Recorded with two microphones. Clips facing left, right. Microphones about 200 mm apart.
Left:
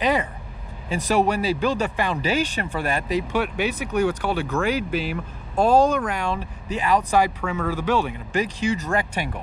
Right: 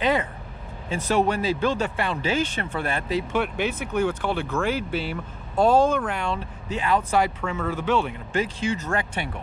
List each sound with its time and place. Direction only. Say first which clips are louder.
0.0 s speech: left 1 dB; 10° left (ahead or behind)